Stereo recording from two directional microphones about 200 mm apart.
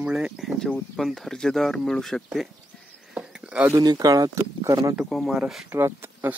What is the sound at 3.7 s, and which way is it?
Speech, 20° right (ahead or behind).